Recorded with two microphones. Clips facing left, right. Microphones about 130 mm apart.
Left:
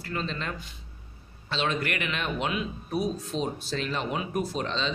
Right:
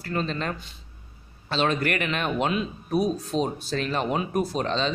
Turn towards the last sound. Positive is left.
turn(degrees=-45)  # may be behind; listen again after turning